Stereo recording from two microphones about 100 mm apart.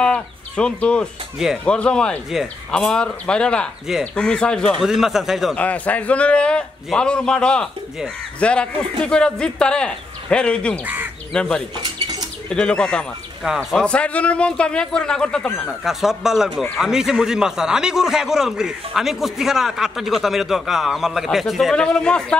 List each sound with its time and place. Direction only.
0.0 s a man's voice: 10° left (ahead or behind)
4.8 s a man's voice: 5° right (ahead or behind)
5.6 s a man's voice: 15° left (ahead or behind)
11.8 s rodents: 45° right (ahead or behind)
12.4 s a man's voice: 10° left (ahead or behind)
15.8 s a man's voice: 5° right (ahead or behind)